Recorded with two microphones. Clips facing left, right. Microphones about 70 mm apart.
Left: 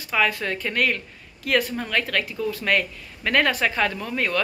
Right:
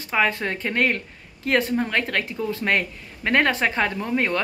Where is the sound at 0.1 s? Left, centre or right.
Right.